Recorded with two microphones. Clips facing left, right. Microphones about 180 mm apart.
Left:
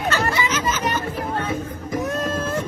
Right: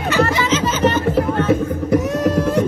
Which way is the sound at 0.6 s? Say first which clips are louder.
Right 7 dB; 10° left (ahead or behind).